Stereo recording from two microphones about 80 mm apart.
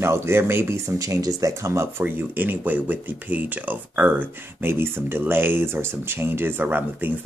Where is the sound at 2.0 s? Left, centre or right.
Right.